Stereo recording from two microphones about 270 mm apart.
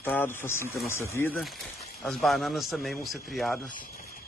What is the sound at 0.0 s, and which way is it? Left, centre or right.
A man's voice, centre.